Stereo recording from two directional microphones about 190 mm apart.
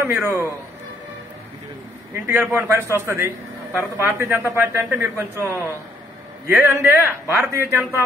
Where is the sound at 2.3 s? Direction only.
10° right (ahead or behind).